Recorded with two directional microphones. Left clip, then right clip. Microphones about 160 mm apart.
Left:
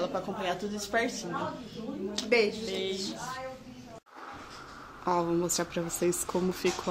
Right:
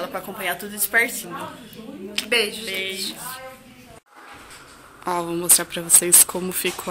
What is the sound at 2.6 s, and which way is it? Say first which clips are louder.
Speech: right 6 dB; centre (ahead or behind).